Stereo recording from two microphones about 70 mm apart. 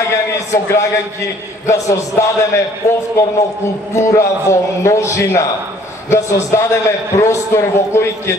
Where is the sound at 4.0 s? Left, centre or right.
Left.